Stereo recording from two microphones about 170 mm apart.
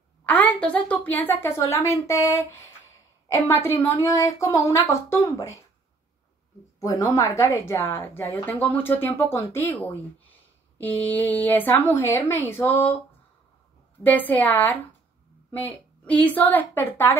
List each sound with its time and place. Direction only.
0.2 s speech: 10° left (ahead or behind)
6.8 s speech: 20° left (ahead or behind)
14.0 s speech: 10° left (ahead or behind)